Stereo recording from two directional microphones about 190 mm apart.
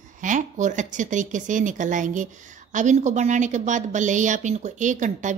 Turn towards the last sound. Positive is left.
turn(degrees=-40)  # may be behind; listen again after turning